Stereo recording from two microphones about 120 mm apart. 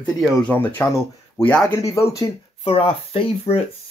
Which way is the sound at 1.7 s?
25° left (ahead or behind).